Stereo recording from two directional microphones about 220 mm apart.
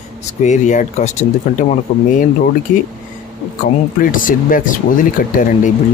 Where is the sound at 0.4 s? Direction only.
35° left (ahead or behind).